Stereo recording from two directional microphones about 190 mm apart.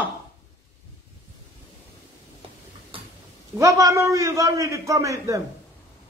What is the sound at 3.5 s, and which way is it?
A man's voice, 15° right (ahead or behind).